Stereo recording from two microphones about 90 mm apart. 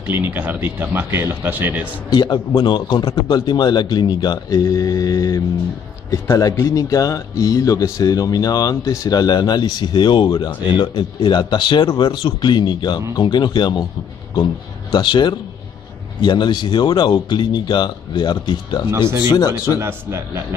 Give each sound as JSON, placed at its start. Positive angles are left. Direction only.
{"t": 0.1, "sound": "speech", "side_deg": -20}
{"t": 2.0, "sound": "a man's voice", "side_deg": 55}
{"t": 18.9, "sound": "a man's voice", "side_deg": -30}
{"t": 19.2, "sound": "speech", "side_deg": 45}
{"t": 19.8, "sound": "a man's voice", "side_deg": -30}